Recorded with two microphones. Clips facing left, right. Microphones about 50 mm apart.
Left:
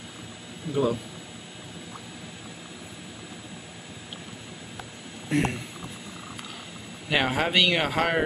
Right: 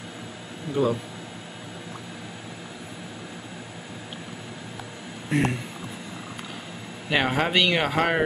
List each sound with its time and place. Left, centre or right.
0.8 s speech: centre
5.3 s speech: centre
7.1 s speech: centre